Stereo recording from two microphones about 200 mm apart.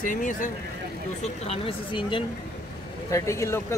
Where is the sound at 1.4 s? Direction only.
30° left (ahead or behind).